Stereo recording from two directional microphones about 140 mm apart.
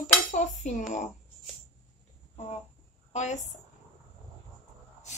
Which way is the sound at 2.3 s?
50° left (ahead or behind).